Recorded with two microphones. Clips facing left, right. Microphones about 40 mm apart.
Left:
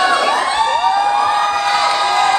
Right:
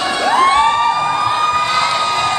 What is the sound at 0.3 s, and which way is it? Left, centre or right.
Emergency vehicle, right.